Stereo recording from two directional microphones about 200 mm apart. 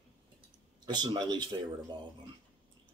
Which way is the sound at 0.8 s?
20° right (ahead or behind).